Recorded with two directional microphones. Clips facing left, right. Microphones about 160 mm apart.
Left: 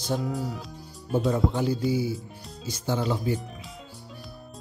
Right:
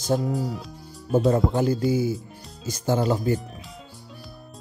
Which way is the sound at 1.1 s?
45° right (ahead or behind).